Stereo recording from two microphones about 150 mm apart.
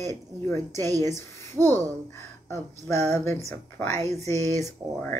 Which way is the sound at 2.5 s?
45° right (ahead or behind).